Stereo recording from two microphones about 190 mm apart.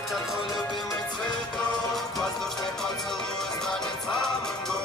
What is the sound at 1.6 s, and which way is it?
Music, centre (ahead or behind).